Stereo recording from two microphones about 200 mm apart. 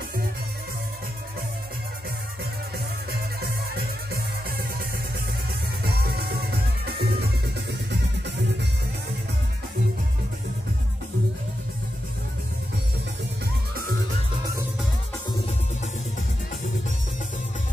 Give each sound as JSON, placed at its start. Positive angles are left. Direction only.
{"t": 3.1, "sound": "music", "side_deg": -50}
{"t": 5.9, "sound": "music", "side_deg": -50}